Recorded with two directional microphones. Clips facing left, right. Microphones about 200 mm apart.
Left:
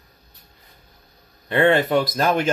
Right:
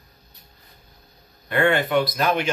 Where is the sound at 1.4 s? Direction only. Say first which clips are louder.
Left 3 dB; 30° left (ahead or behind).